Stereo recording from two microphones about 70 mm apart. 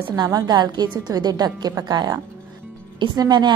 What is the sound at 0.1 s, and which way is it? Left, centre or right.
A woman's voice, right.